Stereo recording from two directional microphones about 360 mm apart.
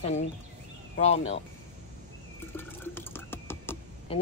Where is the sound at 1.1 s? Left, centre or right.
Left.